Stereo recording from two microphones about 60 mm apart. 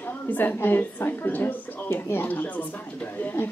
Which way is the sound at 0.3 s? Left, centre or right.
Left.